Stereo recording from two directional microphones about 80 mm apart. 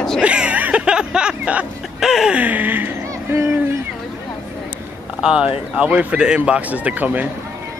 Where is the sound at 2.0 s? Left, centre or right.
Centre.